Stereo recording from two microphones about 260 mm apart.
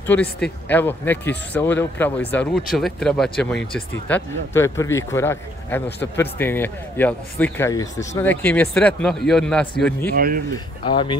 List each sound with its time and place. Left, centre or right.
0.0 s a man's voice: centre
10.1 s speech: right
10.8 s speech: centre